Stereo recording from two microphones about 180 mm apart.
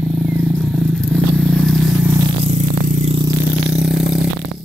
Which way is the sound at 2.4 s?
40° right (ahead or behind).